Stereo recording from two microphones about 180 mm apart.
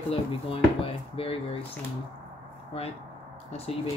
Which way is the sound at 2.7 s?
35° left (ahead or behind).